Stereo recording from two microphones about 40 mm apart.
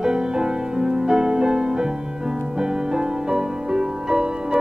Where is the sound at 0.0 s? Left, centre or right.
Centre.